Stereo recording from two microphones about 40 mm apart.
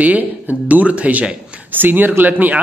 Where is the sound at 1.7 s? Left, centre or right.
Right.